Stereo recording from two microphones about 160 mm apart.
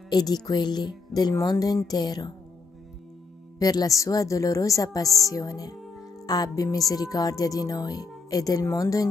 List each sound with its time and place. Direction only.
0.1 s speech: 25° left (ahead or behind)
3.5 s speech: 25° left (ahead or behind)